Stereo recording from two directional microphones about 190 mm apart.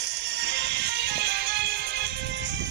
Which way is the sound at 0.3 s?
65° right (ahead or behind).